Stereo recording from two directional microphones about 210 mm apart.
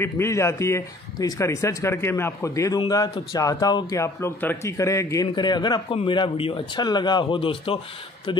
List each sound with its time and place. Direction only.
0.0 s speech: 15° left (ahead or behind)